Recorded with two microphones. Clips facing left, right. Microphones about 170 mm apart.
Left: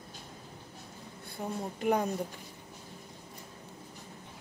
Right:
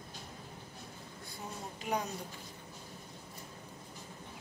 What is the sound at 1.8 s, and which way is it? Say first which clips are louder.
Speech: left 7 dB; 55° left (ahead or behind).